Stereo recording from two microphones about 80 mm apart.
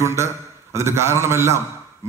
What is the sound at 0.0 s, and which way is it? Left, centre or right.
A man's voice, right.